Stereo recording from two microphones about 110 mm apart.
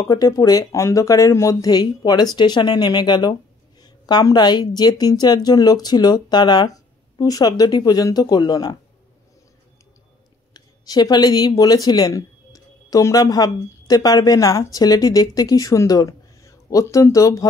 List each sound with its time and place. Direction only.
0.0 s a woman's voice: 35° left (ahead or behind)
10.5 s speech: 35° left (ahead or behind)